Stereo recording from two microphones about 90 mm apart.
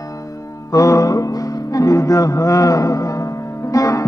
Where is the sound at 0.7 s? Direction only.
40° left (ahead or behind).